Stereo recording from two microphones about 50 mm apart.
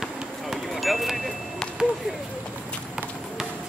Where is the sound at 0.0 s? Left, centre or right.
Centre.